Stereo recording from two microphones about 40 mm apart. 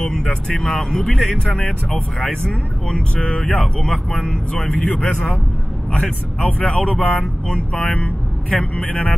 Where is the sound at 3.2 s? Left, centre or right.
Left.